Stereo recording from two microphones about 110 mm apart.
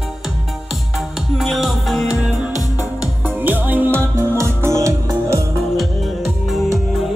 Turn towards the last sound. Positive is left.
turn(degrees=0)  # may be behind; listen again after turning